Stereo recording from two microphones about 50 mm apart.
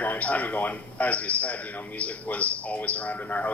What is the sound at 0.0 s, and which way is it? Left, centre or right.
A man's voice, left.